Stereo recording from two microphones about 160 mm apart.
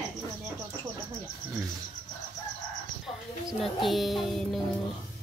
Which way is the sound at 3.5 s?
Centre (ahead or behind).